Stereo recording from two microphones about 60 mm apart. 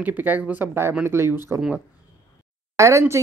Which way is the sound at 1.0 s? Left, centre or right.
Right.